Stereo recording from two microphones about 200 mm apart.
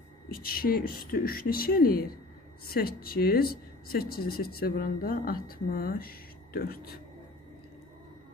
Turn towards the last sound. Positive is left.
turn(degrees=50)  # may be behind; listen again after turning